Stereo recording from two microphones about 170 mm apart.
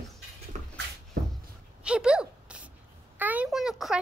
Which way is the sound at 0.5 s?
45° right (ahead or behind).